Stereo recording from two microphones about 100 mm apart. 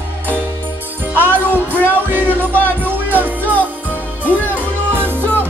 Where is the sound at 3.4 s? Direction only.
15° left (ahead or behind).